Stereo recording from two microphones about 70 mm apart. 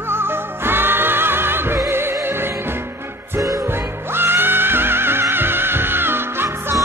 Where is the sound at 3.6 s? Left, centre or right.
Right.